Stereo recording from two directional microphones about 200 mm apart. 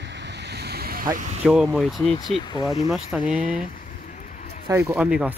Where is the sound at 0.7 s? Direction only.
50° right (ahead or behind).